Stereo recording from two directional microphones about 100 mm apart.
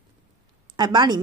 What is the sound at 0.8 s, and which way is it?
Speech, 50° right (ahead or behind).